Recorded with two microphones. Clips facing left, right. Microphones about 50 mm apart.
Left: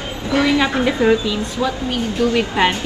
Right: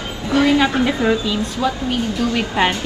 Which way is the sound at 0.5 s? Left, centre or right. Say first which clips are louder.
Even; left.